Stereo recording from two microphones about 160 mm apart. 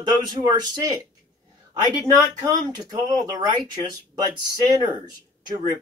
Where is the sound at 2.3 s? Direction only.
25° right (ahead or behind).